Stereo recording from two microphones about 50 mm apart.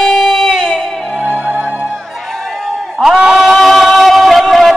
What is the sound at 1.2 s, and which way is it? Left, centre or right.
Music, right.